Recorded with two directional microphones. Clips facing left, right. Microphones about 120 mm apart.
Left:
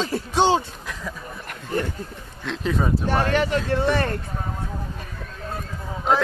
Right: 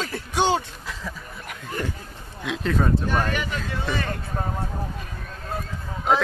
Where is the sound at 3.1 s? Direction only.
30° left (ahead or behind).